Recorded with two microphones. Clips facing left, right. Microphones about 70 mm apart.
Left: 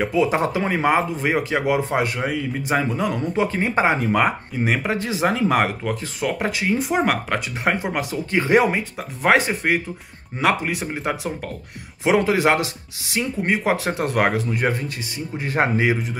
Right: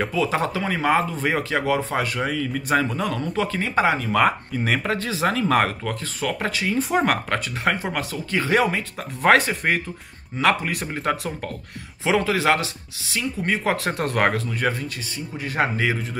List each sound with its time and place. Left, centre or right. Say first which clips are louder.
0.0 s speech: left 3 dB; centre
4.1 s speech: even; centre
6.8 s speech: right 3 dB; centre
7.6 s speech: left 3 dB; left
9.2 s speech: even; centre
12.0 s speech: left 3 dB; left
13.7 s speech: left 2 dB; centre
15.4 s speech: left 3 dB; left